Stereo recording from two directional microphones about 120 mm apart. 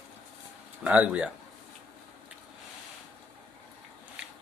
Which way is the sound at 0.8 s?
10° right (ahead or behind).